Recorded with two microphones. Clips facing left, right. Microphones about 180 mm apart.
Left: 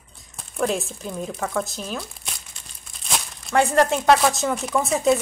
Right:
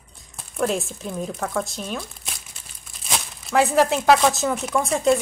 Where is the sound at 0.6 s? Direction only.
Centre (ahead or behind).